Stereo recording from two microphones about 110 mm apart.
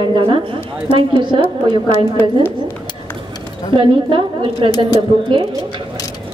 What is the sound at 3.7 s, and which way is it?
A woman's voice, 50° right (ahead or behind).